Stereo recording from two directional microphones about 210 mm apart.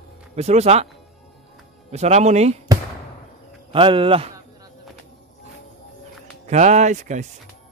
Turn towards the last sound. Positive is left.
turn(degrees=-35)  # may be behind; listen again after turning